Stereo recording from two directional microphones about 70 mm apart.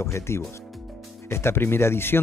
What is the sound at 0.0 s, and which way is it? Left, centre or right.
Speech, left.